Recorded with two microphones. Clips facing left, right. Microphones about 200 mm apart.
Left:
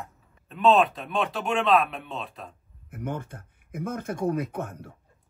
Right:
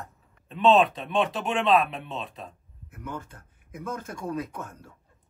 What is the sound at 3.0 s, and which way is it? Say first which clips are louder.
Speech: left 4 dB; 55° left (ahead or behind).